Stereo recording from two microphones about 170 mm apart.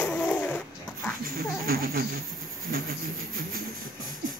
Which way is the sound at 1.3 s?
60° right (ahead or behind).